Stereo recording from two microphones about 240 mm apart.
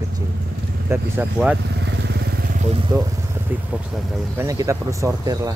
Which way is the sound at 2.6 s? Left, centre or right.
Right.